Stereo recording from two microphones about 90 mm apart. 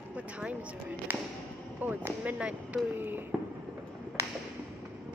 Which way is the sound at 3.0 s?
20° right (ahead or behind).